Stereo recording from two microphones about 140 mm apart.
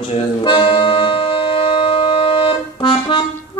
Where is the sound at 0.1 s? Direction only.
35° left (ahead or behind).